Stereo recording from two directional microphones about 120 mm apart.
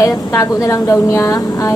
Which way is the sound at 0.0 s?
25° left (ahead or behind).